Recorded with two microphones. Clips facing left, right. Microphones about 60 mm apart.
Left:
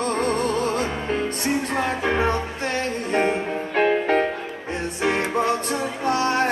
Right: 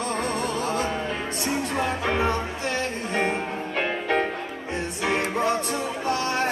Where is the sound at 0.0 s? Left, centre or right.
Left.